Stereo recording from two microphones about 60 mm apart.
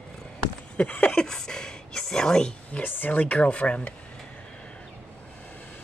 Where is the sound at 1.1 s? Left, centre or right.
Centre.